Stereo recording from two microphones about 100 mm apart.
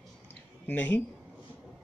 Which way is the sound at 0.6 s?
20° left (ahead or behind).